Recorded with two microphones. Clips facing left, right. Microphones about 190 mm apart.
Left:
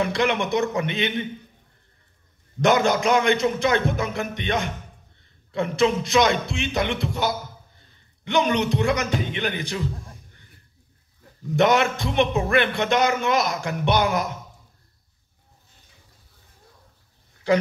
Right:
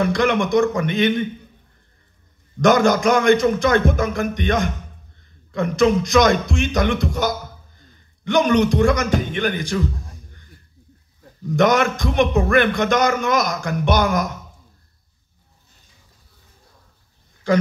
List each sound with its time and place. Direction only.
0.0 s a man's voice: 45° right (ahead or behind)
2.6 s a man's voice: 45° right (ahead or behind)
11.6 s a man's voice: 45° right (ahead or behind)